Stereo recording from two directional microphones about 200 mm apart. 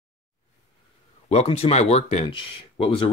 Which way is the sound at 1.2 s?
30° left (ahead or behind).